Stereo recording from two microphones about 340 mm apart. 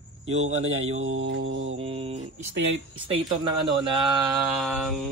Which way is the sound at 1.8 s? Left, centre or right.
Centre.